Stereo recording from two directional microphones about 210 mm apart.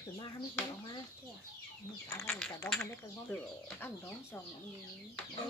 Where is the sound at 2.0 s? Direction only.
15° left (ahead or behind).